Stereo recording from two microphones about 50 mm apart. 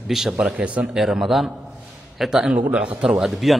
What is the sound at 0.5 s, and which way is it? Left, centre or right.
Speech, right.